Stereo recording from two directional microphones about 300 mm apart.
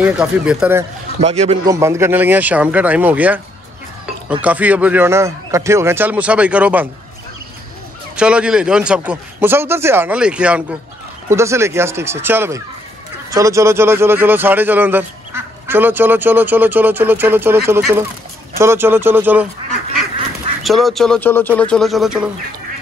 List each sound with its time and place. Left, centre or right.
0.0 s speech: centre
1.2 s a man's voice: right
1.8 s speech: centre
8.2 s speech: centre
20.6 s speech: centre